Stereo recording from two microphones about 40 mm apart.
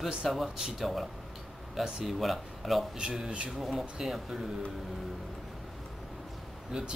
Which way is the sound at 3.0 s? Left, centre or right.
Centre.